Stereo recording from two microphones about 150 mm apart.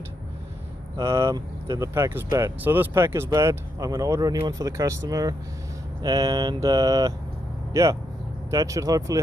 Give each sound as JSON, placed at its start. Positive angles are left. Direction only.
{"t": 0.9, "sound": "speech", "side_deg": -20}